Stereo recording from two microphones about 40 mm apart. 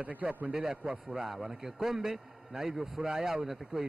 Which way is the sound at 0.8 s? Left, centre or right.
Right.